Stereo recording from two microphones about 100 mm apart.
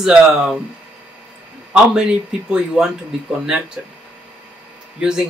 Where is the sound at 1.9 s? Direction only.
5° right (ahead or behind).